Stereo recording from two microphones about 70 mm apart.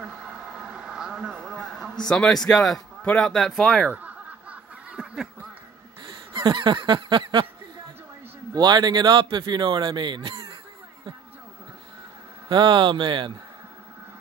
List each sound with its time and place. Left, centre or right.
0.0 s a sound: centre
2.0 s a man's voice: centre
3.9 s snicker: right
6.0 s a sound: right
8.5 s speech: right
12.4 s speech: right